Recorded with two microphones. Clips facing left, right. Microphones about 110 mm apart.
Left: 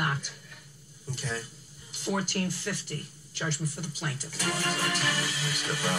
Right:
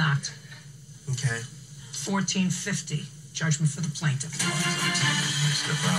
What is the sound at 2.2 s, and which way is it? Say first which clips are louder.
Speech: right 6 dB; 35° left (ahead or behind).